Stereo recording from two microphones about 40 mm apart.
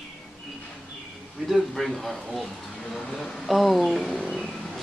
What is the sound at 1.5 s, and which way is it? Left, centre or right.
A man's voice, centre.